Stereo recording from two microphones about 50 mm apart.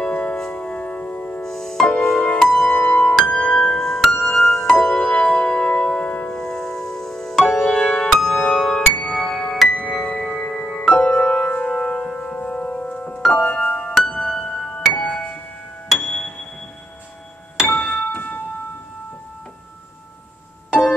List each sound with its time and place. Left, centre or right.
0.0 s music: left
1.4 s music: centre
4.8 s music: left
6.3 s music: centre
13.2 s music: centre
13.5 s music: left
13.9 s music: centre
17.6 s music: centre
18.0 s music: left